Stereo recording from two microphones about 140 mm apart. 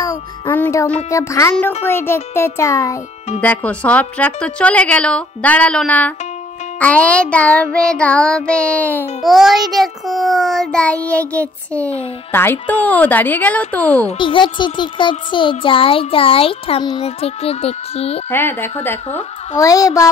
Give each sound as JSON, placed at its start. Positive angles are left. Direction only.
{"t": 0.5, "sound": "a child's voice", "side_deg": 20}
{"t": 3.3, "sound": "speech", "side_deg": 10}
{"t": 9.2, "sound": "a child's voice", "side_deg": 0}
{"t": 14.0, "sound": "a child's voice", "side_deg": 35}
{"t": 18.3, "sound": "a child's voice", "side_deg": 15}